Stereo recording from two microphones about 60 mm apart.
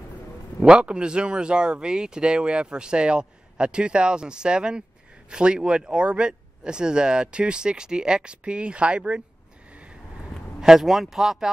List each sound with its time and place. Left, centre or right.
0.6 s speech: centre
10.6 s speech: centre